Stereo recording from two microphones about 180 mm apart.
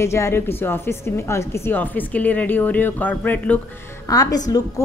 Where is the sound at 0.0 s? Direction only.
15° left (ahead or behind).